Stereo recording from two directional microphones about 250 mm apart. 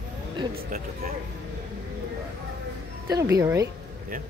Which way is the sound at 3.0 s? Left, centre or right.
Centre.